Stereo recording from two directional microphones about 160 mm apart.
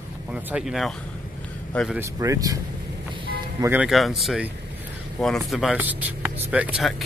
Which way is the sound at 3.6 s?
10° right (ahead or behind).